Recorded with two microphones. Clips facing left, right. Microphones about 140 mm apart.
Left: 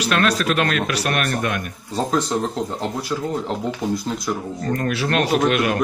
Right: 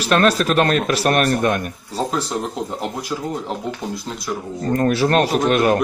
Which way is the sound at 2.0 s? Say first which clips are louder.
Left 4 dB; 5° right (ahead or behind).